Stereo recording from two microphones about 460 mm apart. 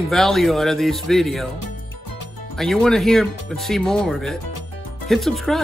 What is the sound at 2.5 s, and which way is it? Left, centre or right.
Speech, centre.